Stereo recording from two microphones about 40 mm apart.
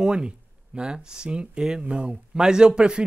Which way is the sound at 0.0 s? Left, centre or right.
Centre.